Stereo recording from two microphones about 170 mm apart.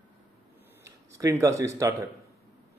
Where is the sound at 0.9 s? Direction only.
20° right (ahead or behind).